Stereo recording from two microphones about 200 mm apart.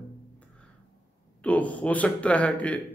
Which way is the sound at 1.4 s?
5° left (ahead or behind).